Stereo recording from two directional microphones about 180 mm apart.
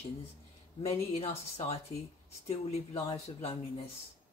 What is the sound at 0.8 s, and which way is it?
Speech, 35° left (ahead or behind).